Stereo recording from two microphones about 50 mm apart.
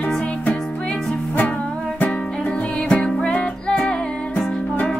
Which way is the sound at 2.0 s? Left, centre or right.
Left.